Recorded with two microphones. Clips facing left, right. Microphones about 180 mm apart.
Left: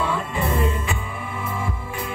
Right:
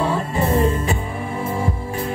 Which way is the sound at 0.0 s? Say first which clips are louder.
Right 4 dB; 40° right (ahead or behind).